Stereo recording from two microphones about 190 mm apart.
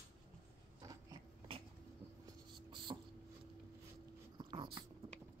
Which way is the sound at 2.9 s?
20° right (ahead or behind).